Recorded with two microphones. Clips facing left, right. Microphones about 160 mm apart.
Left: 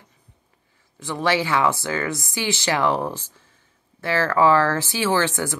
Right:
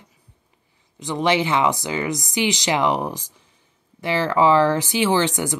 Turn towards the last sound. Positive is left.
turn(degrees=-20)  # may be behind; listen again after turning